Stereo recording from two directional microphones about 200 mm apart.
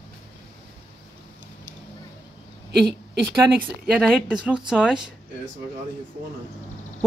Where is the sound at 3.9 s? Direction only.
Centre (ahead or behind).